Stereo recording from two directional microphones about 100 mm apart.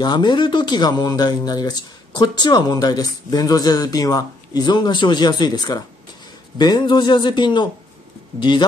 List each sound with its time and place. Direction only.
0.0 s speech: 50° left (ahead or behind)